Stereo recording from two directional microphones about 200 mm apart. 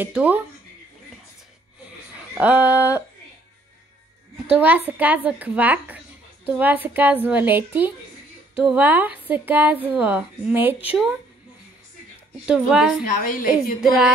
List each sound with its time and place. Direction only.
0.0 s a woman's voice: 5° right (ahead or behind)
2.3 s a woman's voice: 5° right (ahead or behind)
4.5 s a woman's voice: 10° right (ahead or behind)
12.4 s speech: 5° right (ahead or behind)
13.1 s a woman's voice: 40° left (ahead or behind)